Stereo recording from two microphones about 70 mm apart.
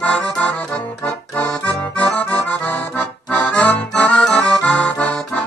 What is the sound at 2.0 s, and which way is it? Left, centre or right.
Accordion, centre.